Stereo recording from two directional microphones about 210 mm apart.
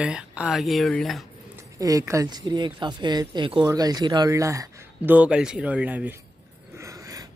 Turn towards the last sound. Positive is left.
turn(degrees=-15)  # may be behind; listen again after turning